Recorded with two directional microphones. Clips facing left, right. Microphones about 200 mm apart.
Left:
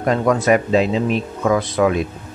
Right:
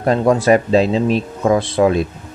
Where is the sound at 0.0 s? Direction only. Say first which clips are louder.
Right 3 dB; 30° right (ahead or behind).